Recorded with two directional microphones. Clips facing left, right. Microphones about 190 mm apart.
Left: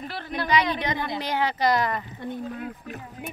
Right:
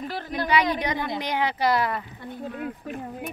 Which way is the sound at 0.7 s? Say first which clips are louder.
Right 1 dB; 15° right (ahead or behind).